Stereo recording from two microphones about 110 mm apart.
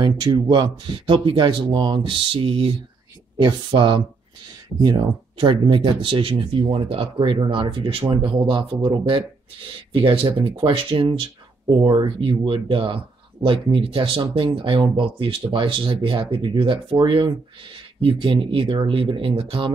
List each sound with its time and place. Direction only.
0.0 s speech: 40° right (ahead or behind)
3.3 s speech: 45° right (ahead or behind)